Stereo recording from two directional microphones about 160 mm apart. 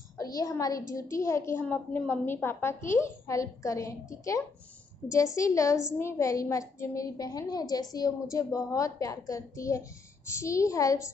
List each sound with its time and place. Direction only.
0.2 s a woman's voice: 20° left (ahead or behind)